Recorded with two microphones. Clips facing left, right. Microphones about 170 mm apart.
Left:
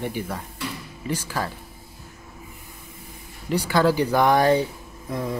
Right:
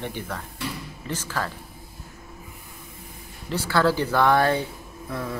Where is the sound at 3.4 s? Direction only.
15° left (ahead or behind).